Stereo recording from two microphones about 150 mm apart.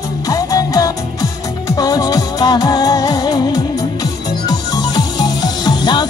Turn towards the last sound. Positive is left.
turn(degrees=30)  # may be behind; listen again after turning